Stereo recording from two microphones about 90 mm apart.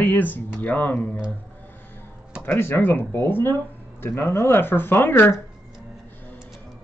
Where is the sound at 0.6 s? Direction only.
20° left (ahead or behind).